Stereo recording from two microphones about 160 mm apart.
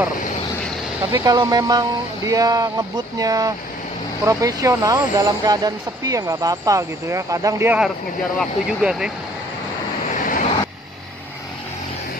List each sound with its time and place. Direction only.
1.1 s speech: 25° right (ahead or behind)
8.4 s speech: 5° right (ahead or behind)